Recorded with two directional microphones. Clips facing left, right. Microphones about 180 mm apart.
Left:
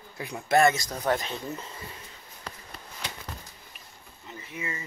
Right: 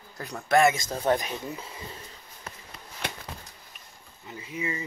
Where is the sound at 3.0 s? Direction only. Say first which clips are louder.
Right 5 dB; 55° right (ahead or behind).